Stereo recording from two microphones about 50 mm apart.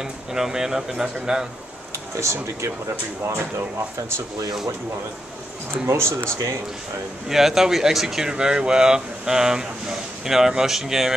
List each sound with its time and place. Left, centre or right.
0.0 s speech: centre
5.9 s speech: right
7.2 s speech: centre